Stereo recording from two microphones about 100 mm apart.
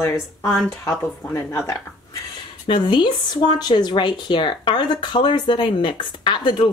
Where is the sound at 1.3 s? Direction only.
30° left (ahead or behind).